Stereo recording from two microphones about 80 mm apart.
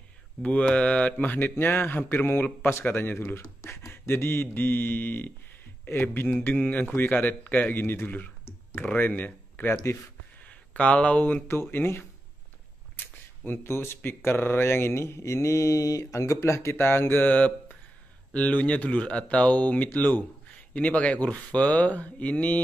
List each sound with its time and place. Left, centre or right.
0.4 s speech: centre
11.7 s speech: left